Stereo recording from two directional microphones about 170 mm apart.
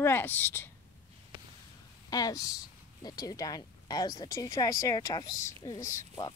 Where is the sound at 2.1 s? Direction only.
20° left (ahead or behind).